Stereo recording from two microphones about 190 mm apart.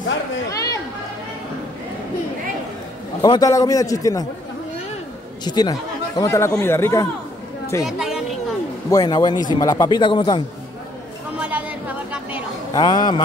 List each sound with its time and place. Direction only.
0.5 s children playing: 15° left (ahead or behind)
3.2 s speech: 20° left (ahead or behind)
5.4 s speech: 20° left (ahead or behind)
7.8 s a sound: centre (ahead or behind)
8.9 s a man's voice: 20° left (ahead or behind)
11.3 s chatter: 10° right (ahead or behind)
12.1 s a sound: 10° right (ahead or behind)
12.7 s a man's voice: 20° left (ahead or behind)